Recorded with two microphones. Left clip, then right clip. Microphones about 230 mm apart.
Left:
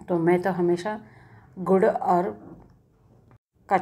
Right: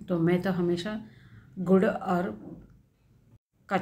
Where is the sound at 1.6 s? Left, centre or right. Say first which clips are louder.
Left 5 dB; left.